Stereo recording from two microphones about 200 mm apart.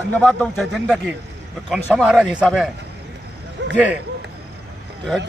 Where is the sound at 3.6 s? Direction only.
60° right (ahead or behind).